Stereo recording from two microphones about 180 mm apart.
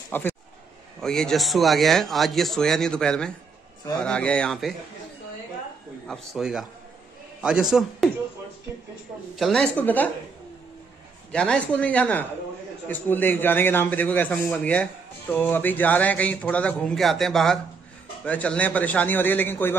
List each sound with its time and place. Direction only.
0.1 s speech: 10° left (ahead or behind)
6.0 s speech: centre (ahead or behind)
9.3 s a man's voice: centre (ahead or behind)
11.3 s a man's voice: 5° left (ahead or behind)